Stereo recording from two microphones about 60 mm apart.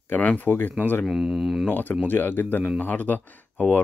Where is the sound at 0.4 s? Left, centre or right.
Left.